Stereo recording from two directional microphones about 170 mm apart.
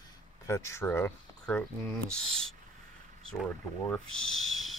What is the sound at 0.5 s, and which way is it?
Speech, 15° left (ahead or behind).